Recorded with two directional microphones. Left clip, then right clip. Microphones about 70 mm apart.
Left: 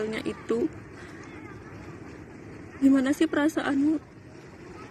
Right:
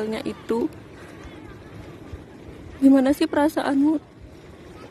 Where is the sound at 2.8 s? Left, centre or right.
Right.